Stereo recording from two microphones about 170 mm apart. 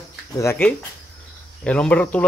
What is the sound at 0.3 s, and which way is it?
Speech, 15° left (ahead or behind).